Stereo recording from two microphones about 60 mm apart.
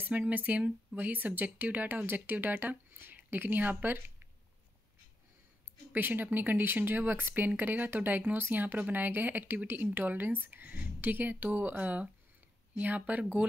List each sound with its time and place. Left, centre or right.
0.0 s speech: right
5.9 s speech: right